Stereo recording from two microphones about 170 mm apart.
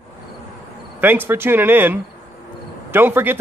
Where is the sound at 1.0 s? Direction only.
10° right (ahead or behind).